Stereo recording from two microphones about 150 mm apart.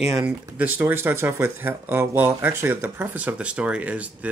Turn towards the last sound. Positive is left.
turn(degrees=-10)  # may be behind; listen again after turning